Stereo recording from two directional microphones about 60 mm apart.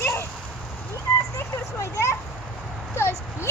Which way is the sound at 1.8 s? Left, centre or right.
Left.